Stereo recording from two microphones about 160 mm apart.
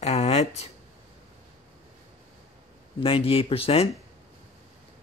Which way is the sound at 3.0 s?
35° left (ahead or behind).